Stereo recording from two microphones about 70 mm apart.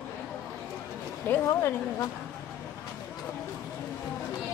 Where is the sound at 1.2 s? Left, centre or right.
Left.